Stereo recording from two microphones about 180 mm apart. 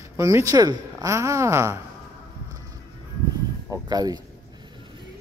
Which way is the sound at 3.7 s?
20° right (ahead or behind).